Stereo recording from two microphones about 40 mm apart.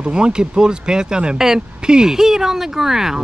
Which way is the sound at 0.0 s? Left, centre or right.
Right.